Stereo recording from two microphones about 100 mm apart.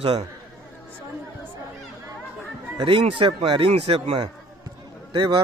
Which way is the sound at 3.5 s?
75° right (ahead or behind).